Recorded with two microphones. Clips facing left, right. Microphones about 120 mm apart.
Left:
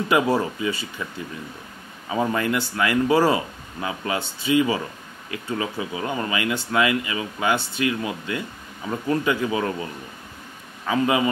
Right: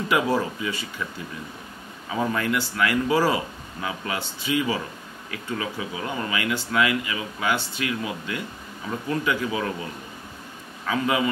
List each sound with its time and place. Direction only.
0.3 s speech: 25° left (ahead or behind)
2.0 s speech: 20° left (ahead or behind)
10.9 s speech: 25° left (ahead or behind)